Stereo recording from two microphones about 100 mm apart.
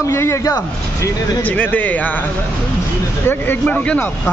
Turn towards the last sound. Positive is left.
turn(degrees=10)  # may be behind; listen again after turning